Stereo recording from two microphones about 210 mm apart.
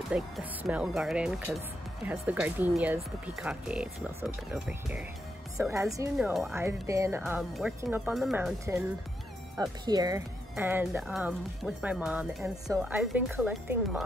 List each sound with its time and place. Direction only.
0.1 s speech: 5° right (ahead or behind)
6.1 s speech: centre (ahead or behind)
6.5 s speech: 15° right (ahead or behind)
9.6 s speech: 20° right (ahead or behind); by 14.0 s centre (ahead or behind)